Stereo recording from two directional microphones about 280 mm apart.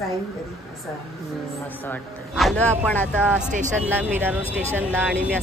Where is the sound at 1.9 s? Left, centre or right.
Centre.